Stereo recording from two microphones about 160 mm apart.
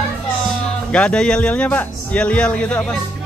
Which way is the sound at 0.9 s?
5° left (ahead or behind).